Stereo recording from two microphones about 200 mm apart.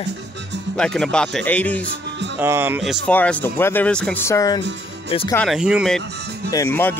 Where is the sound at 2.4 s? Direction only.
10° right (ahead or behind).